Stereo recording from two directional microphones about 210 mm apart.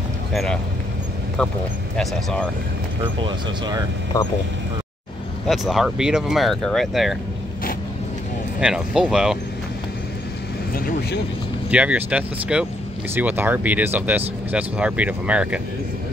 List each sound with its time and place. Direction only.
0.3 s speech: centre (ahead or behind)
3.2 s speech: 20° right (ahead or behind)
5.5 s speech: centre (ahead or behind)
8.5 s speech: 5° right (ahead or behind)
10.7 s vehicle: 45° left (ahead or behind)
11.7 s speech: 5° right (ahead or behind)